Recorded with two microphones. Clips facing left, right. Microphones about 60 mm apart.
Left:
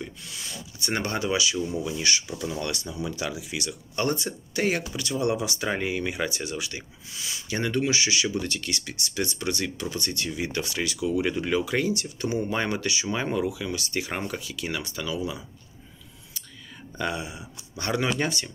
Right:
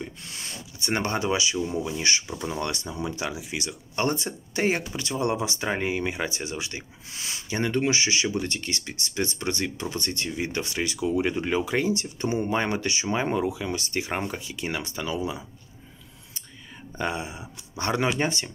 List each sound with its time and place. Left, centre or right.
0.2 s a sound: right
0.7 s speech: right
3.1 s speech: right
4.1 s speech: right
4.6 s speech: right
7.1 s speech: right
7.4 s speech: right
11.2 s speech: right
17.0 s speech: right
17.7 s speech: right